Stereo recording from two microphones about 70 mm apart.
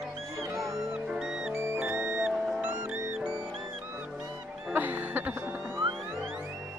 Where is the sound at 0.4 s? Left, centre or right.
Right.